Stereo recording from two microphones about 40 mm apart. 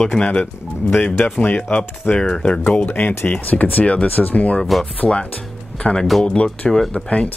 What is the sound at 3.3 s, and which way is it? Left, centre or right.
Speech, left.